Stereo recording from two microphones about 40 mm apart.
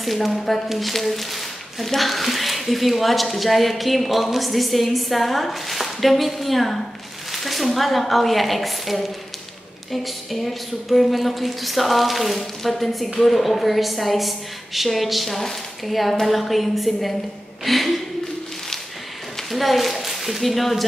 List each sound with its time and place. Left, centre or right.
0.0 s speech: centre
10.3 s speech: centre
19.5 s speech: centre